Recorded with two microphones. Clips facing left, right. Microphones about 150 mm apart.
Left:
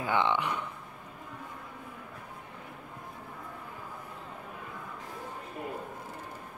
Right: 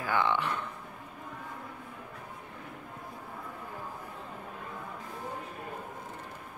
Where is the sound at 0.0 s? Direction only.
20° left (ahead or behind).